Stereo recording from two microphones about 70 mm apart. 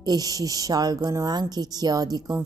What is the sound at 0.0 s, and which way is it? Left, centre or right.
A woman's voice, right.